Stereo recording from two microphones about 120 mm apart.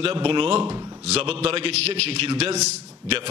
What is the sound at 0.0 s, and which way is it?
A man's voice, 50° right (ahead or behind).